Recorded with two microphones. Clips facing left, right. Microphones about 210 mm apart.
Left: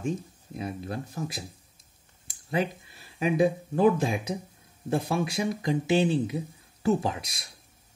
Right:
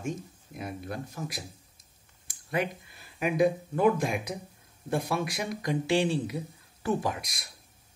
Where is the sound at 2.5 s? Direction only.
30° left (ahead or behind).